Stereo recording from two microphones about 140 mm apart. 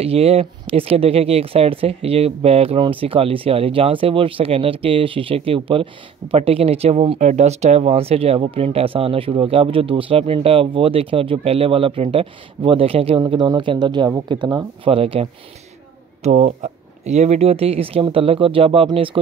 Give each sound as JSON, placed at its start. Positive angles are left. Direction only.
{"t": 0.0, "sound": "speech", "side_deg": -45}
{"t": 14.9, "sound": "speech", "side_deg": -40}
{"t": 16.2, "sound": "speech", "side_deg": -55}